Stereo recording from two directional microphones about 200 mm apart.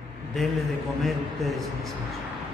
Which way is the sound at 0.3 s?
Centre (ahead or behind).